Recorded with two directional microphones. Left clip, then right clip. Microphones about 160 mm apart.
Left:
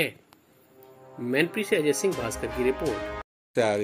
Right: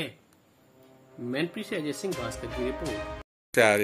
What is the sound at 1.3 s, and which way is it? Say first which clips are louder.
Speech: left 7 dB; 15° left (ahead or behind).